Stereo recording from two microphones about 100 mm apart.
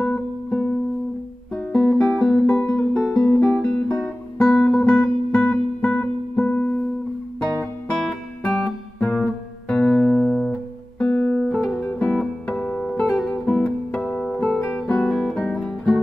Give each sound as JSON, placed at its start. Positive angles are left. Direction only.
{"t": 0.0, "sound": "music", "side_deg": 10}
{"t": 7.9, "sound": "music", "side_deg": 10}